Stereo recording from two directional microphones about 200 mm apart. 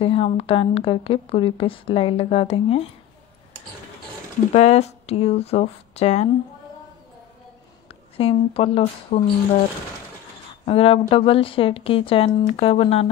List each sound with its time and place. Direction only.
0.0 s a woman's voice: 25° left (ahead or behind)
4.6 s speech: 35° left (ahead or behind)
7.9 s speech: 30° left (ahead or behind)
10.6 s a woman's voice: 30° left (ahead or behind)